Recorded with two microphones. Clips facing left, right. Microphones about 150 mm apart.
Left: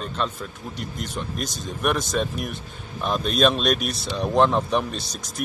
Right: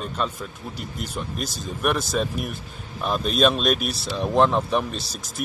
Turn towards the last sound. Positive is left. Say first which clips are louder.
# even
turn(degrees=0)  # may be behind; listen again after turning